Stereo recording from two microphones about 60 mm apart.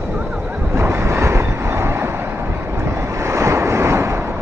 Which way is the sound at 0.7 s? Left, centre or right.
Right.